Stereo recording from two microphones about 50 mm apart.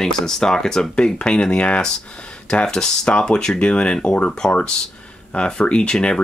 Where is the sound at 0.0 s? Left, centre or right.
Centre.